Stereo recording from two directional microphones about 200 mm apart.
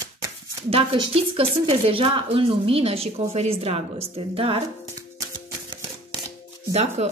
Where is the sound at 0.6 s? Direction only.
30° right (ahead or behind).